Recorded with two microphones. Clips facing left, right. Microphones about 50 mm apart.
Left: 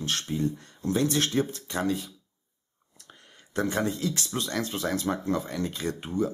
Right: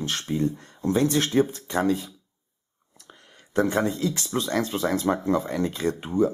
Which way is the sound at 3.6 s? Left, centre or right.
Right.